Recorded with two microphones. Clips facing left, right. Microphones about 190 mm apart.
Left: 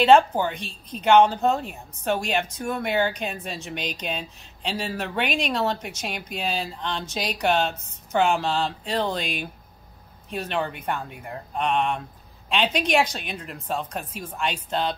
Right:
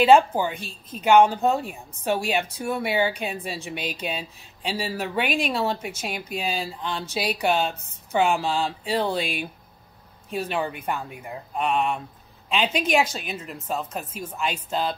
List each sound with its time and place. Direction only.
0.0 s speech: 10° right (ahead or behind)